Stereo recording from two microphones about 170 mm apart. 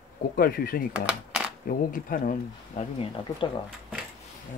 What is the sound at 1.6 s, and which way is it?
Speech, 50° left (ahead or behind).